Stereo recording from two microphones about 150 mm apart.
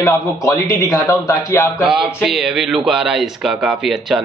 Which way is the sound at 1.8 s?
5° right (ahead or behind).